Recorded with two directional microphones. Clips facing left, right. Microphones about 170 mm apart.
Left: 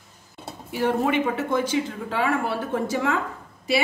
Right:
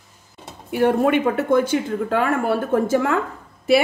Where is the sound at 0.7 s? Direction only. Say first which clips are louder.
Right 5 dB; 55° right (ahead or behind).